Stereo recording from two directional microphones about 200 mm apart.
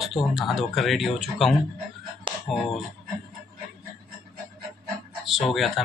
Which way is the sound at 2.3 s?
25° right (ahead or behind).